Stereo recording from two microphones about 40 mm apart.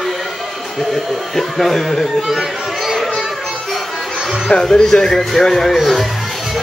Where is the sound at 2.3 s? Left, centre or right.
Centre.